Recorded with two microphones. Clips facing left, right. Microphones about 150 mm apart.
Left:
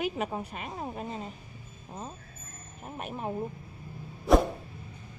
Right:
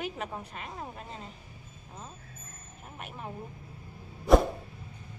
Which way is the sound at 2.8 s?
30° left (ahead or behind).